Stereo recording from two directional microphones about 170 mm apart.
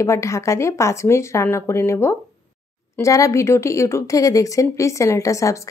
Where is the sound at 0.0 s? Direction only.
15° left (ahead or behind).